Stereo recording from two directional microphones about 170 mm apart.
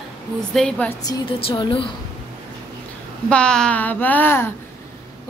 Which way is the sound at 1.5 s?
30° left (ahead or behind).